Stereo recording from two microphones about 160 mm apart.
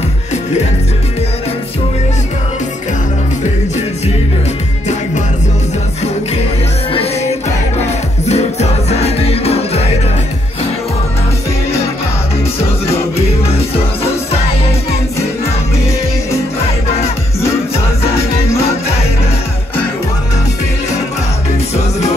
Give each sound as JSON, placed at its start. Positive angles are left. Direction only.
{"t": 6.9, "sound": "music", "side_deg": 35}
{"t": 8.3, "sound": "music", "side_deg": 45}
{"t": 12.5, "sound": "music", "side_deg": 40}